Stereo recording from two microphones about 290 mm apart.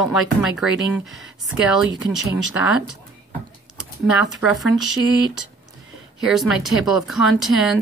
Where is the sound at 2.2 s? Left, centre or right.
Left.